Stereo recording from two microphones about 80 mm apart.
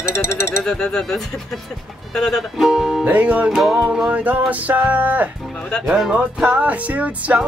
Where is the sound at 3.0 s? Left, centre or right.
Centre.